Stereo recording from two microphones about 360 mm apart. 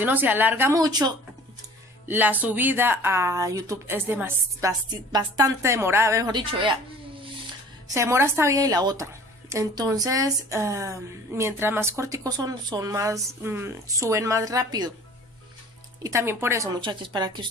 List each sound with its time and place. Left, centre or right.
0.0 s a woman's voice: centre
7.9 s a woman's voice: centre
16.0 s a woman's voice: centre